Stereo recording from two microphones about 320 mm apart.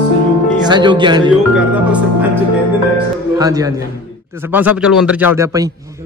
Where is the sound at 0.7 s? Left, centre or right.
Centre.